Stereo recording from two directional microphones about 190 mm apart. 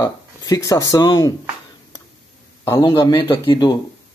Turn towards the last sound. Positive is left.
turn(degrees=20)  # may be behind; listen again after turning